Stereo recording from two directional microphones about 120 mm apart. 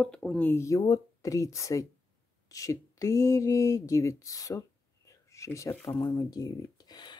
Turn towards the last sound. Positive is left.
turn(degrees=35)  # may be behind; listen again after turning